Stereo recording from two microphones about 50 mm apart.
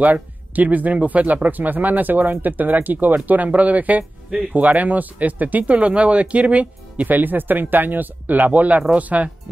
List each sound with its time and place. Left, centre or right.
0.0 s speech: right